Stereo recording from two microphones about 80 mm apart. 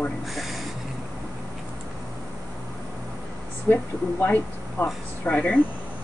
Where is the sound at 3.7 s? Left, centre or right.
Left.